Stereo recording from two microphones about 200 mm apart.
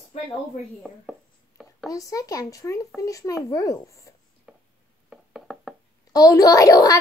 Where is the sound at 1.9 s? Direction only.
15° left (ahead or behind).